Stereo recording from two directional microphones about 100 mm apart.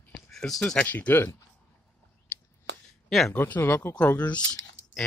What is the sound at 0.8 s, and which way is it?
Speech, 15° left (ahead or behind).